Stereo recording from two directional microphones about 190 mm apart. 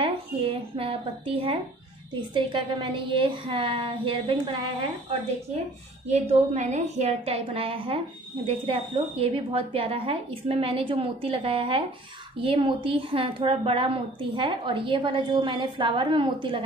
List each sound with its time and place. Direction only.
0.0 s a sound: 30° right (ahead or behind)
2.1 s a woman's voice: 25° right (ahead or behind)
6.0 s a woman's voice: 35° right (ahead or behind)